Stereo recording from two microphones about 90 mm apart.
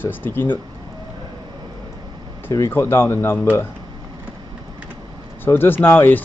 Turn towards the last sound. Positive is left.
turn(degrees=20)  # may be behind; listen again after turning